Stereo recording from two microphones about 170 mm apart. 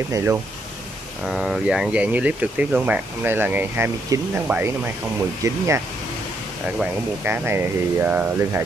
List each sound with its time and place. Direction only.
0.1 s speech: 10° right (ahead or behind)
6.8 s speech: 10° right (ahead or behind)